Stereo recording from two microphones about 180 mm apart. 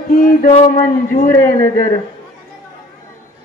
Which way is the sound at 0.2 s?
50° left (ahead or behind).